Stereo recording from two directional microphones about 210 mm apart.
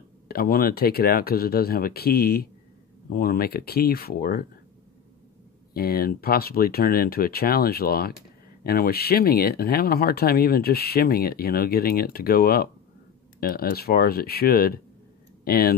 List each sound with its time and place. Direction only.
0.3 s speech: 45° left (ahead or behind)
5.7 s speech: 45° left (ahead or behind)